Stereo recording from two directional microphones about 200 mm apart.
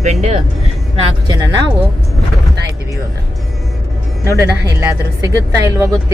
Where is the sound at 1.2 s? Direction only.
20° right (ahead or behind).